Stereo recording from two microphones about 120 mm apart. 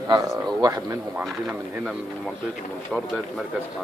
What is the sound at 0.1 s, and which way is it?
Speech, 30° right (ahead or behind).